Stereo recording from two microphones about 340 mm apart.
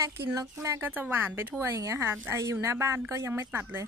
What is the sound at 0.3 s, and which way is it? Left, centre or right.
Speech, centre.